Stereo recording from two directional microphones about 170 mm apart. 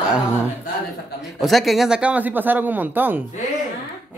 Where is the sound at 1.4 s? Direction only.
Centre (ahead or behind).